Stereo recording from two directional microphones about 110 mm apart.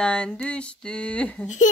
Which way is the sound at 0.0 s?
10° left (ahead or behind).